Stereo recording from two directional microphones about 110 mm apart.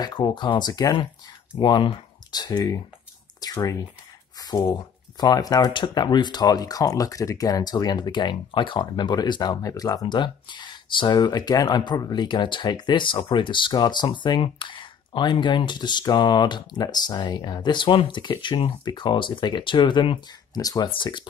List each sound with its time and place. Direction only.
0.0 s speech: 40° left (ahead or behind)
3.3 s a sound: 35° left (ahead or behind)
4.4 s speech: 35° left (ahead or behind)
11.1 s speech: 35° left (ahead or behind)
20.9 s speech: 45° left (ahead or behind)